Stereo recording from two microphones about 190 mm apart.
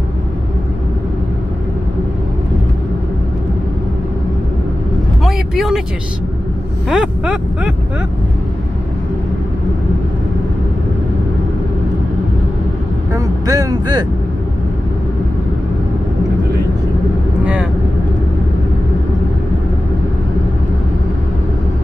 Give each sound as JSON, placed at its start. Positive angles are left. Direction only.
{"t": 5.2, "sound": "vehicle", "side_deg": 0}
{"t": 6.9, "sound": "a sound", "side_deg": -5}
{"t": 13.1, "sound": "speech", "side_deg": -20}